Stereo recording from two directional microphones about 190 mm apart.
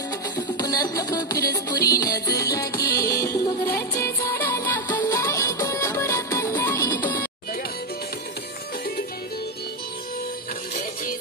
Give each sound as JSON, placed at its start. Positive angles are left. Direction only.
{"t": 0.4, "sound": "music", "side_deg": 20}